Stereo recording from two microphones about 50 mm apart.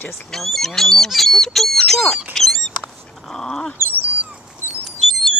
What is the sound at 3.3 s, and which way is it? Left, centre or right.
Dog, centre.